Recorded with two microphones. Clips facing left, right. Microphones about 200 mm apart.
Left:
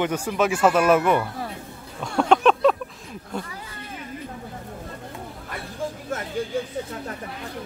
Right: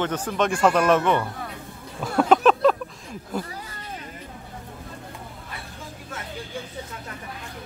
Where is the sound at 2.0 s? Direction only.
5° right (ahead or behind).